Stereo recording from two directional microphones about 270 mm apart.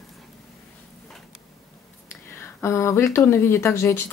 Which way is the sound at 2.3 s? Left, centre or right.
Centre.